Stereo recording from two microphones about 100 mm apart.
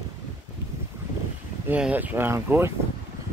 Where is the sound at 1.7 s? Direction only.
15° right (ahead or behind).